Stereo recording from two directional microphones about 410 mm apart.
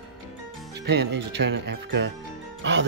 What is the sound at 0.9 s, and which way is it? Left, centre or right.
Speech, right.